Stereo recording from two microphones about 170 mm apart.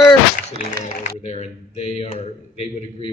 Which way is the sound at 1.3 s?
40° left (ahead or behind).